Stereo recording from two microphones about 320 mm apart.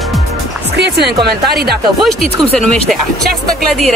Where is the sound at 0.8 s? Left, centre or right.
Right.